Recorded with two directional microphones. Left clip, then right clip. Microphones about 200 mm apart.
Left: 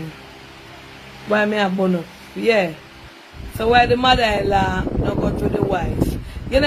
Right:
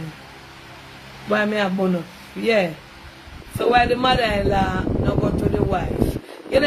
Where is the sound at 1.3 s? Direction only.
15° right (ahead or behind).